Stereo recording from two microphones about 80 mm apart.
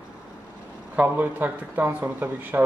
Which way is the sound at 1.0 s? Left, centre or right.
Right.